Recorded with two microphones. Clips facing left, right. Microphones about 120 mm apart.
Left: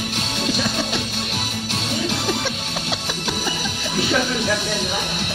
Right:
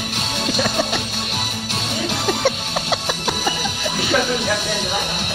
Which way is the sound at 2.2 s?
55° right (ahead or behind).